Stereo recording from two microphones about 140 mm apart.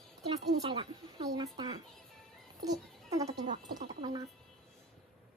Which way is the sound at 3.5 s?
70° right (ahead or behind).